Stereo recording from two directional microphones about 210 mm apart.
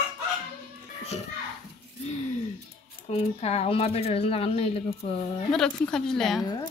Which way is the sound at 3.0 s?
30° left (ahead or behind).